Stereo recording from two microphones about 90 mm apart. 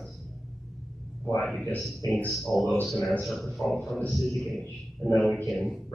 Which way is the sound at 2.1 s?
5° left (ahead or behind).